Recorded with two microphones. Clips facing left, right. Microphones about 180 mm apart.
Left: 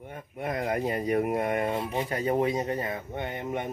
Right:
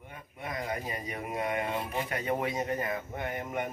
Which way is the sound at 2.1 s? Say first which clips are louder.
Left 6 dB; 30° left (ahead or behind).